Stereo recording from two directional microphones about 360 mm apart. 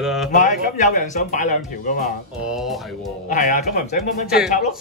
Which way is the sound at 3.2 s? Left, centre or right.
Left.